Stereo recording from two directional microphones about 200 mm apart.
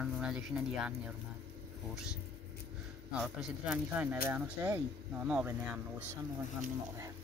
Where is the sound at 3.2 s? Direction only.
5° right (ahead or behind).